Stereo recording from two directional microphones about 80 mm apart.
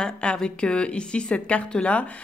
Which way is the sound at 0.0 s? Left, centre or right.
Centre.